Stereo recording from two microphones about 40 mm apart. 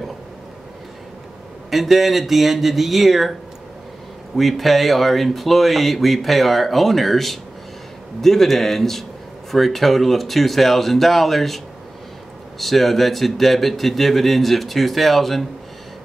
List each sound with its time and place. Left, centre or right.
1.7 s speech: centre
4.4 s a man's voice: centre